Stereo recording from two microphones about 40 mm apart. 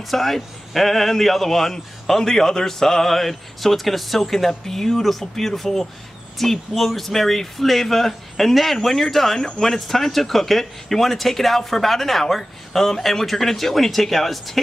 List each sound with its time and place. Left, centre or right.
0.0 s speech: centre